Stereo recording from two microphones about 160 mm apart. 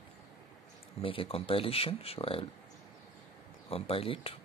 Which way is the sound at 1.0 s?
35° left (ahead or behind).